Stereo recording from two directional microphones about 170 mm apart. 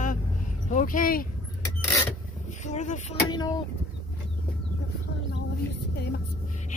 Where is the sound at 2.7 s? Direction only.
45° left (ahead or behind).